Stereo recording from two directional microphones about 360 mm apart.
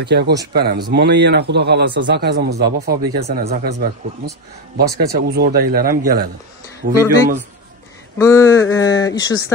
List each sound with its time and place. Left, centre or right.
0.0 s speech: right
8.2 s speech: centre